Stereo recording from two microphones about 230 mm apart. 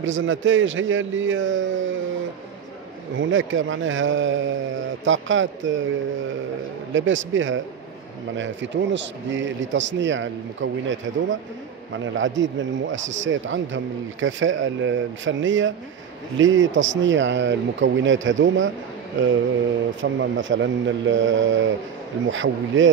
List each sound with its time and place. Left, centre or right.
0.0 s speech: right
6.9 s speech: right
20.0 s speech: right